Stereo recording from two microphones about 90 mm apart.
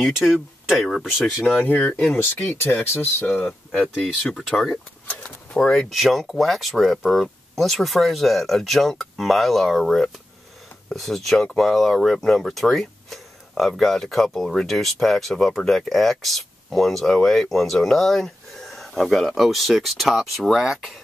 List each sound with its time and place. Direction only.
0.0 s speech: 5° right (ahead or behind)
1.6 s speech: 15° left (ahead or behind)
3.9 s speech: centre (ahead or behind)
5.1 s speech: 15° left (ahead or behind)